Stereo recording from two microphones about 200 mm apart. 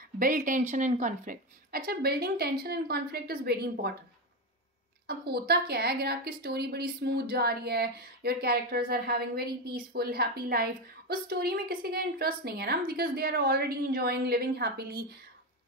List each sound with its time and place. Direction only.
0.2 s a woman's voice: 40° right (ahead or behind)
5.0 s a woman's voice: 50° right (ahead or behind)